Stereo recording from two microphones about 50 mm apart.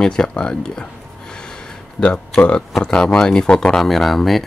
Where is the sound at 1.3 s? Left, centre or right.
Centre.